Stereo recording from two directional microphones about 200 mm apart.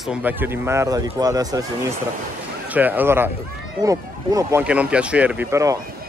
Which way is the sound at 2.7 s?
10° right (ahead or behind).